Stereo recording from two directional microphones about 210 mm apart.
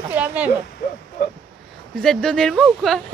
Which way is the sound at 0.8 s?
50° left (ahead or behind).